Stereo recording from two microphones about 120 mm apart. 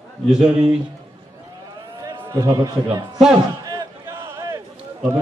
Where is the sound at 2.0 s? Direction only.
25° right (ahead or behind).